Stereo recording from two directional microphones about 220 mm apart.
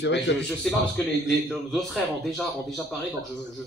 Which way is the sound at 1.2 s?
Centre (ahead or behind).